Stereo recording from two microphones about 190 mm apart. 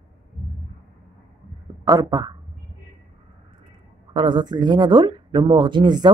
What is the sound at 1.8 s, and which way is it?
Speech, 20° right (ahead or behind).